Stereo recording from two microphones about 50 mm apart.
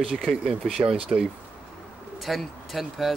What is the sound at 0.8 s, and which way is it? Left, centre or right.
Speech, centre.